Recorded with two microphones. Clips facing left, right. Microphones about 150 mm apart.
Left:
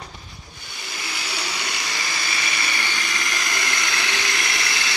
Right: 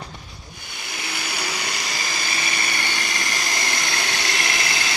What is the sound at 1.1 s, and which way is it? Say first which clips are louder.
Blender: right 2 dB; 45° right (ahead or behind).